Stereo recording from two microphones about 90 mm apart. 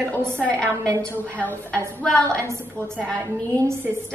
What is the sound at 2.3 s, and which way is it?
Speech, 35° right (ahead or behind).